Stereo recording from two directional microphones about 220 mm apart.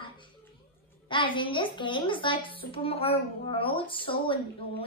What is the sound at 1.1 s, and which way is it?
A woman's voice, 20° left (ahead or behind).